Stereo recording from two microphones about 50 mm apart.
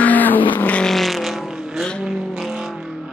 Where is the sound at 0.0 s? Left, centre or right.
Left.